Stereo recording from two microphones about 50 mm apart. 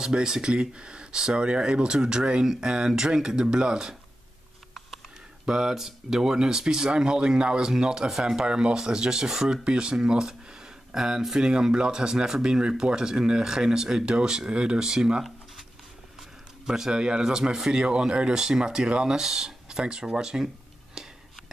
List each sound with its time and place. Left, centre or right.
0.0 s speech: centre
5.4 s speech: centre
16.6 s speech: centre